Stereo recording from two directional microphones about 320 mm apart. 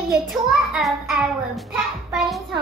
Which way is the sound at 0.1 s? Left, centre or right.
Centre.